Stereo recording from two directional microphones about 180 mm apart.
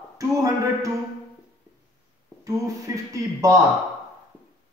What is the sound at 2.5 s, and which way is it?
A man's voice, 20° right (ahead or behind).